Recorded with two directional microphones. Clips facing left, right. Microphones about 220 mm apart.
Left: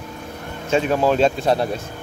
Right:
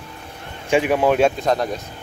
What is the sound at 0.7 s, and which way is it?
Speech, 15° right (ahead or behind).